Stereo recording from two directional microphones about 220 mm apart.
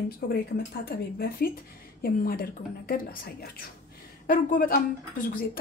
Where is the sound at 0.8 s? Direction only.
45° left (ahead or behind).